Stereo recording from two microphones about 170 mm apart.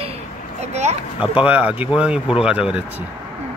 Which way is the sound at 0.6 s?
40° right (ahead or behind).